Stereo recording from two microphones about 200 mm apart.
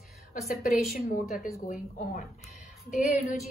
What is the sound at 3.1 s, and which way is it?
Speech, 40° left (ahead or behind).